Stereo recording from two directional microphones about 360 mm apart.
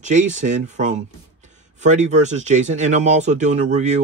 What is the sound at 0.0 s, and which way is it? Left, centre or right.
Speech, centre.